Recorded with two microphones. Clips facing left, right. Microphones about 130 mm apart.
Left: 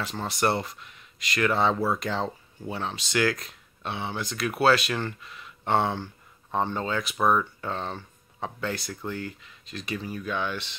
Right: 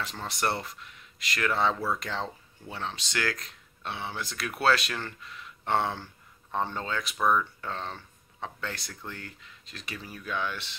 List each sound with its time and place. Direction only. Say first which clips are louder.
0.0 s speech: left 5 dB; 5° left (ahead or behind)
7.2 s speech: left 2 dB; 25° left (ahead or behind)
7.6 s speech: left 4 dB; 5° left (ahead or behind)